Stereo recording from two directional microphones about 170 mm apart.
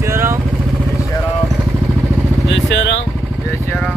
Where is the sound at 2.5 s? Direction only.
90° left.